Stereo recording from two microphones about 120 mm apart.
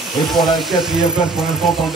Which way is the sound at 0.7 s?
5° right (ahead or behind).